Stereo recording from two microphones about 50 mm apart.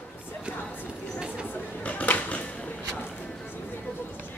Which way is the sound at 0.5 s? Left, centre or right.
Left.